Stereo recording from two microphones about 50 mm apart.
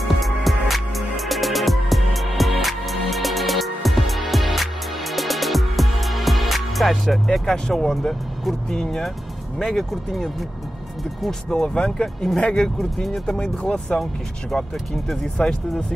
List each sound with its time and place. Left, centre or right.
0.2 s music: centre
6.9 s speech: centre
11.2 s speech: centre
15.0 s speech: centre